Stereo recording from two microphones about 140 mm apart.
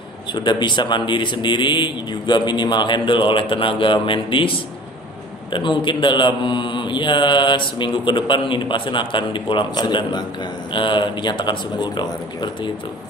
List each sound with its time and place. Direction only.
0.3 s speech: 35° left (ahead or behind)
5.5 s speech: 35° left (ahead or behind)